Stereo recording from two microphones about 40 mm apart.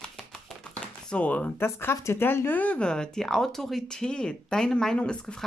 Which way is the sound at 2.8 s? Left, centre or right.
Left.